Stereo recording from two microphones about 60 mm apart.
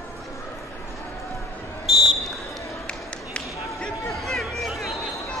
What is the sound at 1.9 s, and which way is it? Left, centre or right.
Basketball bounce, centre.